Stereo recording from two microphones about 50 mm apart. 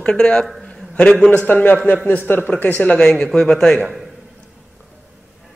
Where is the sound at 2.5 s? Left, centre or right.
Left.